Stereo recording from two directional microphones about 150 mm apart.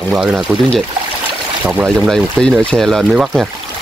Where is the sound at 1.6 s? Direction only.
5° right (ahead or behind).